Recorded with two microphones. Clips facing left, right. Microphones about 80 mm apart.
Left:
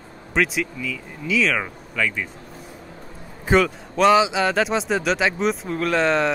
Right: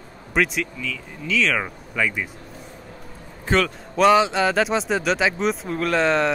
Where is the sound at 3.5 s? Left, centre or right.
Centre.